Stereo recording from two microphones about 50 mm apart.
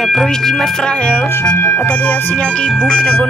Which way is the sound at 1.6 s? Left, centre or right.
Left.